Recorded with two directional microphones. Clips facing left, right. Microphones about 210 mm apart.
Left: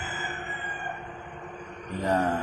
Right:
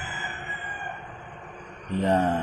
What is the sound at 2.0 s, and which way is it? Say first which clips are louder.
Speech: right 3 dB; 25° right (ahead or behind).